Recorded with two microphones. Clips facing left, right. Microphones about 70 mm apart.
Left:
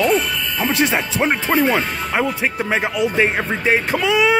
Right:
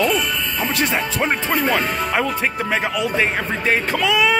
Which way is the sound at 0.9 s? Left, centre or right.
Centre.